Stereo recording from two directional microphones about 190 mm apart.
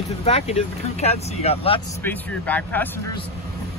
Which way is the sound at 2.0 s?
10° left (ahead or behind).